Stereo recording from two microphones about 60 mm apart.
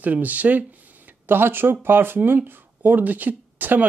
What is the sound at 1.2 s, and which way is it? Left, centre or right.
Speech, right.